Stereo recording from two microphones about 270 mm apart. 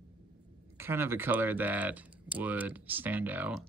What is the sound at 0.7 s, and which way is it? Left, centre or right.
Speech, centre.